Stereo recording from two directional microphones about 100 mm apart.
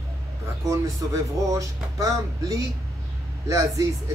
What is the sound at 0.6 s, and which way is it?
Speech, 35° right (ahead or behind).